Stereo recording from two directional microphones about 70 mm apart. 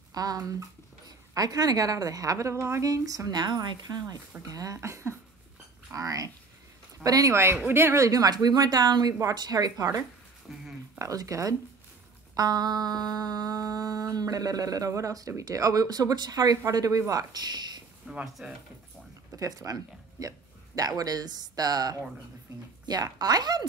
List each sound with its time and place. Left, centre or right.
0.1 s humming: right
3.3 s speech: right
4.4 s speech: right
4.7 s a sound: right
5.9 s speech: right
7.6 s speech: right
9.3 s humming: right
10.5 s speech: centre
11.0 s speech: right
12.4 s humming: right
17.1 s speech: right
18.1 s a sound: centre
19.3 s speech: right